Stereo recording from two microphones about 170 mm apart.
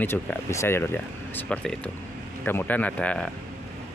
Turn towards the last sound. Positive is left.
turn(degrees=5)  # may be behind; listen again after turning